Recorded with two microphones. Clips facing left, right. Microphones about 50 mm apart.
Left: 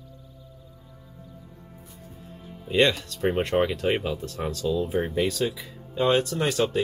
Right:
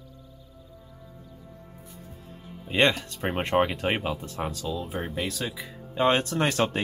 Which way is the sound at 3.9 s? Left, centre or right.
Centre.